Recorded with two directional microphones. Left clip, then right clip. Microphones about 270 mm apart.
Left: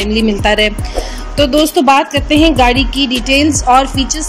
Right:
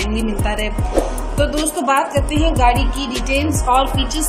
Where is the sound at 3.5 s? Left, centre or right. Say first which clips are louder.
Left 4 dB; left.